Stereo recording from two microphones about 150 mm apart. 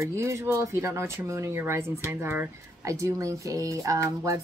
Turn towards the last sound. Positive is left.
turn(degrees=-20)  # may be behind; listen again after turning